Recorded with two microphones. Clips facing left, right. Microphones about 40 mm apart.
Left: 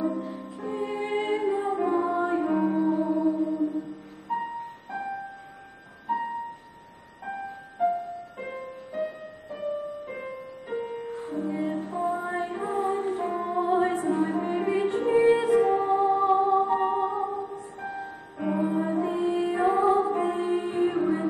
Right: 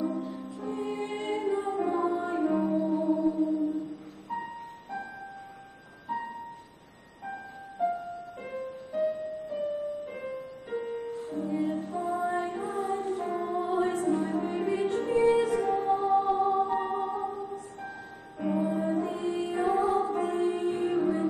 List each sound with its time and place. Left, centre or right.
0.1 s music: centre
6.0 s music: centre
8.4 s music: centre